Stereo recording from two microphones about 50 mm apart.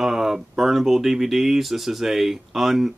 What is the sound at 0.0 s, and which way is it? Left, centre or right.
Speech, centre.